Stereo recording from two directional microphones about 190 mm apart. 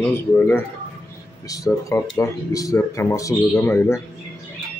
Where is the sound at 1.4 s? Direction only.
20° left (ahead or behind).